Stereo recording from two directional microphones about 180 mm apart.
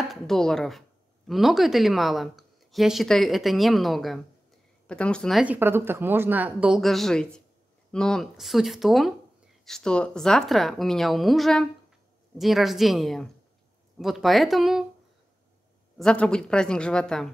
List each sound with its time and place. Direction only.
0.1 s a woman's voice: centre (ahead or behind)
16.0 s speech: 5° left (ahead or behind)